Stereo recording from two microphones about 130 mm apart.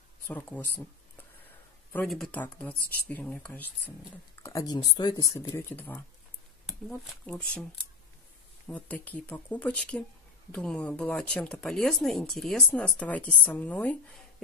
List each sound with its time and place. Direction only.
0.3 s speech: 15° left (ahead or behind)
2.0 s speech: 5° left (ahead or behind)
2.4 s speech: 15° left (ahead or behind)
4.4 s speech: 25° left (ahead or behind)
4.7 s speech: 35° left (ahead or behind); by 6.0 s 15° left (ahead or behind)
7.2 s speech: 10° left (ahead or behind)
8.6 s speech: 10° left (ahead or behind)